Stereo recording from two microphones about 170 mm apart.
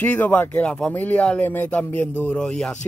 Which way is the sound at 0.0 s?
10° left (ahead or behind).